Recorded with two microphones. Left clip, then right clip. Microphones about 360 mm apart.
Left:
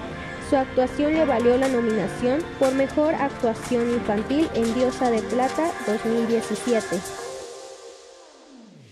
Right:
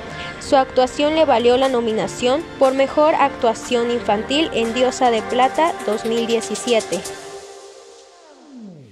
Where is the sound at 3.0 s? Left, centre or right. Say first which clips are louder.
Right 7 dB; right.